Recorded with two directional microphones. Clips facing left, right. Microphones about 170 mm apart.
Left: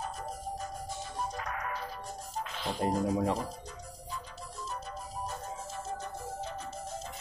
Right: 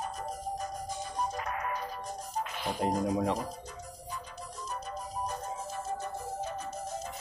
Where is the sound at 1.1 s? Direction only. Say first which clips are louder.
Right 3 dB; 15° right (ahead or behind).